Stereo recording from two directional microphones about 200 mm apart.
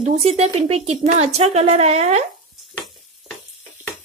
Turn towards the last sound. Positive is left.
turn(degrees=0)  # may be behind; listen again after turning